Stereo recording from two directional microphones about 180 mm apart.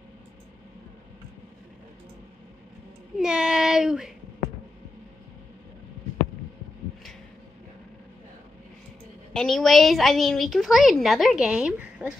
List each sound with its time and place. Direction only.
3.2 s child singing: 5° right (ahead or behind)
9.3 s a woman's voice: centre (ahead or behind)